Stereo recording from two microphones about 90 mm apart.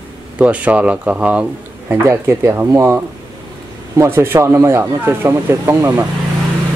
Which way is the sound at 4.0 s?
30° right (ahead or behind).